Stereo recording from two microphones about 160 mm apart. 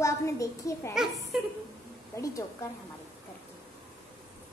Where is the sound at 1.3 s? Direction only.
5° right (ahead or behind).